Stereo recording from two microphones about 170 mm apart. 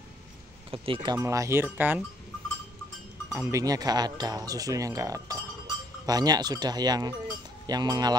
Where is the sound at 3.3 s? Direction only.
15° right (ahead or behind).